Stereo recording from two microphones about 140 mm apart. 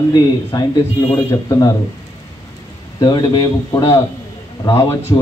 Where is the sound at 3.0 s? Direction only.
30° left (ahead or behind).